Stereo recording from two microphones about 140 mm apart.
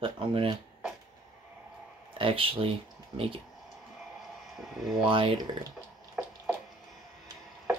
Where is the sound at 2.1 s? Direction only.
40° right (ahead or behind).